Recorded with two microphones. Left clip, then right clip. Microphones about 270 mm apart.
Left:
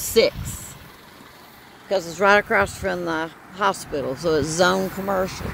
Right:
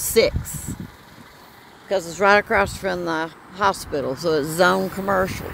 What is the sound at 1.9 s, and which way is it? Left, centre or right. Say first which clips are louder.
Speech: right 1 dB; centre.